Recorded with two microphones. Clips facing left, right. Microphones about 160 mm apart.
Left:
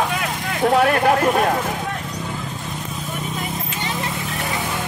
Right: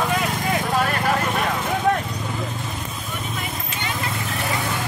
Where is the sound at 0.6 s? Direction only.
60° left (ahead or behind).